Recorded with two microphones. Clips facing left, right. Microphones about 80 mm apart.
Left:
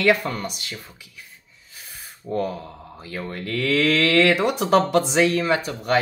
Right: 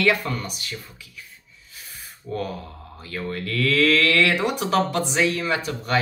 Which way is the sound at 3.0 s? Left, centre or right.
Centre.